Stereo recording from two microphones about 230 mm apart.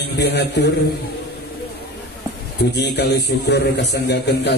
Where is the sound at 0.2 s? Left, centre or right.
Left.